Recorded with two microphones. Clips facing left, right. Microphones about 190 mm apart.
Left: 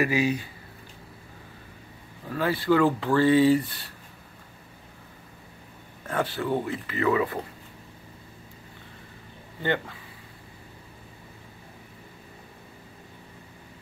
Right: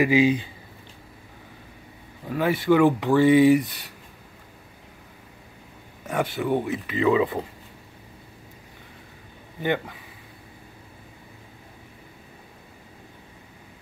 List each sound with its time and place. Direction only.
0.0 s speech: 15° right (ahead or behind)
2.2 s speech: 15° right (ahead or behind)
6.0 s speech: 10° right (ahead or behind)
9.6 s speech: 15° right (ahead or behind)